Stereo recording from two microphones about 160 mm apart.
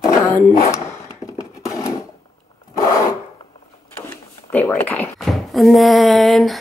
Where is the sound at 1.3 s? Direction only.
20° left (ahead or behind).